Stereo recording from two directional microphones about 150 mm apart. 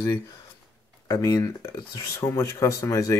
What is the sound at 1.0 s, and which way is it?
Speech, 20° left (ahead or behind).